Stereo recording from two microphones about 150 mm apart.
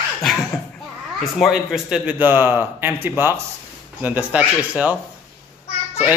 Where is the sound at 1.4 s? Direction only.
Centre (ahead or behind).